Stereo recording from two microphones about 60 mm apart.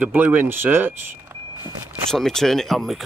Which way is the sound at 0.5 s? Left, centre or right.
Right.